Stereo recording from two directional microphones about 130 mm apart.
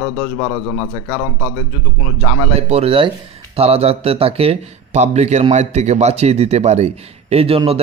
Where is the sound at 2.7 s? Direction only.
50° right (ahead or behind).